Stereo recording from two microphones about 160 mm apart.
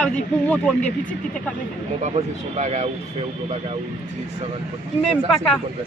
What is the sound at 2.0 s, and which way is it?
Speech, 45° right (ahead or behind).